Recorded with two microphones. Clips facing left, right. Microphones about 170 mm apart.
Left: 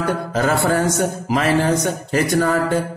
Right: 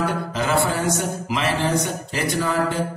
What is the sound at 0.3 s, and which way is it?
A man's voice, 45° left (ahead or behind).